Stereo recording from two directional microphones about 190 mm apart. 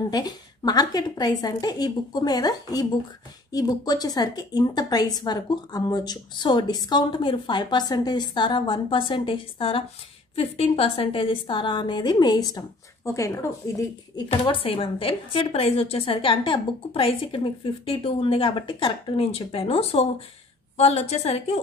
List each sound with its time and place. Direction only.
0.1 s a woman's voice: 20° left (ahead or behind)
14.3 s a woman's voice: 25° left (ahead or behind)